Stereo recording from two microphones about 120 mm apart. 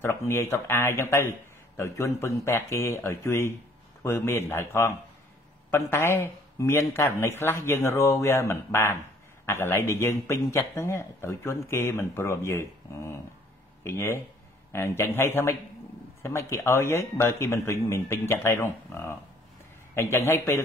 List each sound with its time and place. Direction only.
0.0 s speech: 20° left (ahead or behind)